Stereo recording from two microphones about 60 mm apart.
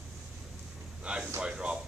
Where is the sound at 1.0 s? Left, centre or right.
Centre.